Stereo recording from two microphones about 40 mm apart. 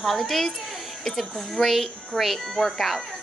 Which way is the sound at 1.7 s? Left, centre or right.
Centre.